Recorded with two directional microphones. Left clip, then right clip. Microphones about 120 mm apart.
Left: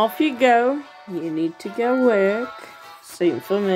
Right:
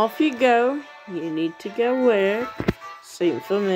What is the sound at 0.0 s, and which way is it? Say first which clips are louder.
Speech: left 1 dB; 15° right (ahead or behind).